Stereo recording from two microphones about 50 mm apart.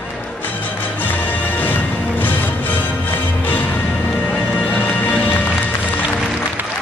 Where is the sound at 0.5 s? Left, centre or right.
Left.